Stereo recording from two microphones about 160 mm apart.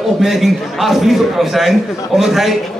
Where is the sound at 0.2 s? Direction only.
Centre (ahead or behind).